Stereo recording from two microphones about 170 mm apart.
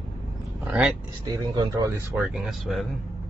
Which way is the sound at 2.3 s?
Centre (ahead or behind).